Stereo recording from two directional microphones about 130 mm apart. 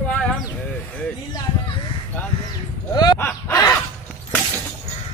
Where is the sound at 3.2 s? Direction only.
15° left (ahead or behind).